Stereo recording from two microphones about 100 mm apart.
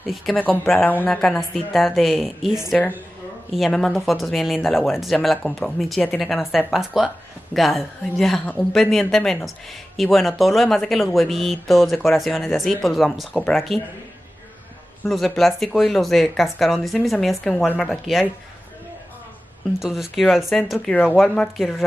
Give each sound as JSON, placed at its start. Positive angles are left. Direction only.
{"t": 0.0, "sound": "speech", "side_deg": 0}
{"t": 0.7, "sound": "speech", "side_deg": 15}
{"t": 15.0, "sound": "speech", "side_deg": 0}
{"t": 19.8, "sound": "speech", "side_deg": -5}
{"t": 20.9, "sound": "speech", "side_deg": 15}
{"t": 21.2, "sound": "speech", "side_deg": 0}